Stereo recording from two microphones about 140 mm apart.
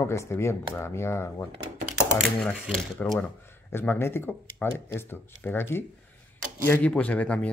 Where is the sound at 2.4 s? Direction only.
5° left (ahead or behind).